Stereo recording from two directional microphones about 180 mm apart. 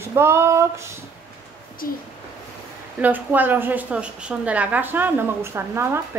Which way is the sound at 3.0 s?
10° right (ahead or behind).